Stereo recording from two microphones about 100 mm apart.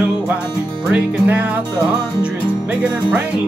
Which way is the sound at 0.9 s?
15° right (ahead or behind).